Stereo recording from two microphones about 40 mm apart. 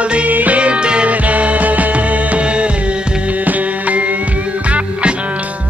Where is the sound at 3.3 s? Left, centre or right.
Right.